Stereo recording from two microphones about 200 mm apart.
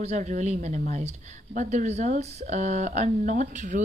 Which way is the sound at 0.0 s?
35° right (ahead or behind).